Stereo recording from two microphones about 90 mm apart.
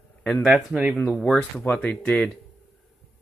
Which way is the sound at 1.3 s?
20° left (ahead or behind).